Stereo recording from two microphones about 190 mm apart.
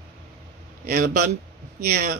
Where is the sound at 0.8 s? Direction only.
50° right (ahead or behind).